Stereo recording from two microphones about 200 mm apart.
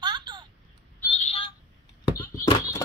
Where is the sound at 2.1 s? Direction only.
15° left (ahead or behind).